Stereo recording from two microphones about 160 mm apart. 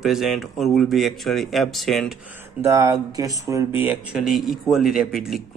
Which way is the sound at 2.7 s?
20° right (ahead or behind).